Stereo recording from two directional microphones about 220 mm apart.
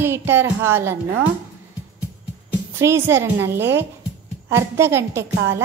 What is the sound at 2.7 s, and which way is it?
A woman's voice, 10° right (ahead or behind).